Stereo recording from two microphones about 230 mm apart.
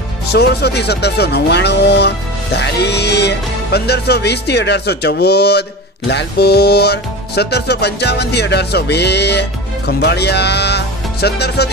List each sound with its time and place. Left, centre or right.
0.3 s speech: left